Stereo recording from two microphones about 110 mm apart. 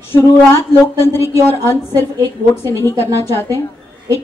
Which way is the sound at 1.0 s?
25° left (ahead or behind).